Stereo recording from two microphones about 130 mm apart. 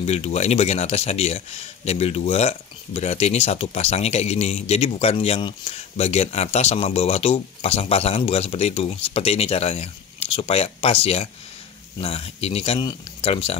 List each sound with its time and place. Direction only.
0.0 s speech: 55° left (ahead or behind)